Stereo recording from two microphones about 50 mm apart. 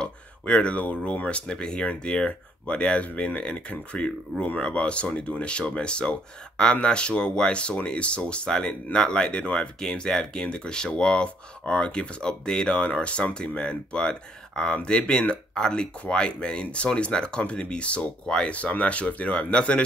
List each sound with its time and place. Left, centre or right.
0.0 s a sound: centre
1.1 s speech: left
1.5 s speech: centre